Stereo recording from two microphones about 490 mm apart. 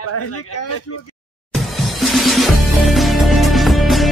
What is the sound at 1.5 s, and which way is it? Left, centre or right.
Music, centre.